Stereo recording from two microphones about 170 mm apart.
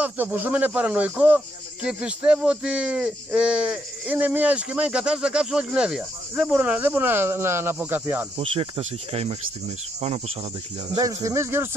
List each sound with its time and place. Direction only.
0.0 s speech: 10° right (ahead or behind)
8.4 s speech: 35° right (ahead or behind)
11.0 s speech: 20° right (ahead or behind)